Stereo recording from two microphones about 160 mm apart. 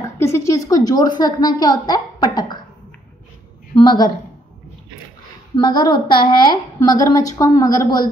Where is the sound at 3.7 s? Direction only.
25° left (ahead or behind).